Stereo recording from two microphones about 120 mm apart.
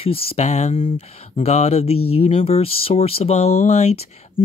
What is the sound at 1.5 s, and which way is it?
Speech, 65° left (ahead or behind).